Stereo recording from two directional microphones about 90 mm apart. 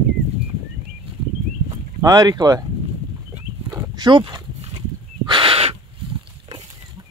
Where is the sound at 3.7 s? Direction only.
50° right (ahead or behind).